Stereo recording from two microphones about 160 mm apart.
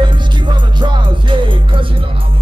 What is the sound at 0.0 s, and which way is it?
Music, 30° right (ahead or behind).